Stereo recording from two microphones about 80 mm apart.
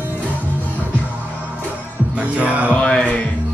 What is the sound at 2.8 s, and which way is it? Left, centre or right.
Music, centre.